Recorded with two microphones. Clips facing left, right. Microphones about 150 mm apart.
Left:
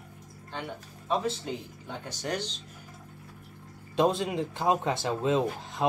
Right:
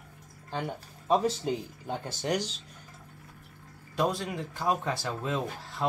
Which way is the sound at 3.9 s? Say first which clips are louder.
Left 4 dB; 25° left (ahead or behind).